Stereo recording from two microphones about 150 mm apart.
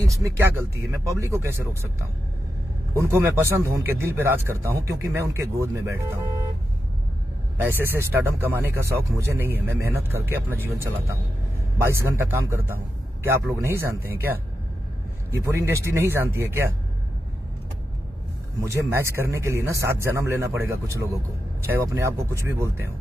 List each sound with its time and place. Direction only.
0.2 s speech: 20° right (ahead or behind)
2.9 s speech: 20° right (ahead or behind)
7.5 s a man's voice: 15° right (ahead or behind)
11.8 s a man's voice: 15° right (ahead or behind)
15.3 s a man's voice: 15° right (ahead or behind)
18.6 s a man's voice: 15° right (ahead or behind)